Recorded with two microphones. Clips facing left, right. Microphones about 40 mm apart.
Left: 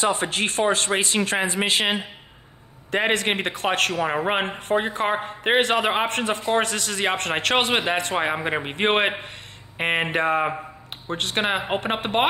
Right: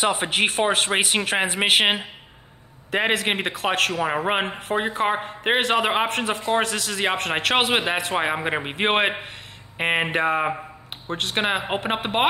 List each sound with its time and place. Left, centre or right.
0.0 s speech: right
0.9 s speech: centre
1.6 s speech: right
2.9 s speech: centre